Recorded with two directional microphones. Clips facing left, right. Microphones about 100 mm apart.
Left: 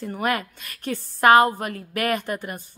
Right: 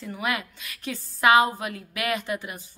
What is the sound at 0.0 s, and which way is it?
A woman's voice, 45° left (ahead or behind).